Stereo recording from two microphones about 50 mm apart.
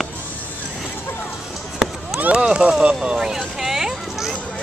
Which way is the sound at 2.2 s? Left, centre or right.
Right.